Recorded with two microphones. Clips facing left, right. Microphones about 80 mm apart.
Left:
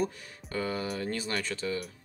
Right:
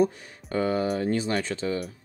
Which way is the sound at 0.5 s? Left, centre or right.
Right.